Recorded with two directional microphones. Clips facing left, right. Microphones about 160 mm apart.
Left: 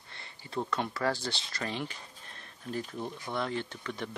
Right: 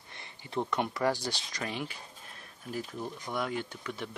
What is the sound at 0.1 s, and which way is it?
Speech, 20° right (ahead or behind).